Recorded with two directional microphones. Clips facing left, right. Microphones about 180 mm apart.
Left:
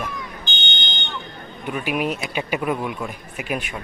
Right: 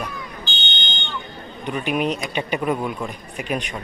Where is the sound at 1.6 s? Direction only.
5° left (ahead or behind).